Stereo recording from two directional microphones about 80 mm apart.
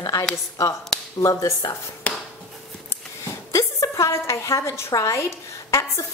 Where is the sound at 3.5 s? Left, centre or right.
Left.